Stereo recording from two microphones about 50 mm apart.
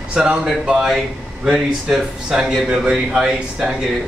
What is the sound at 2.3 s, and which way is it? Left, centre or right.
Speech, centre.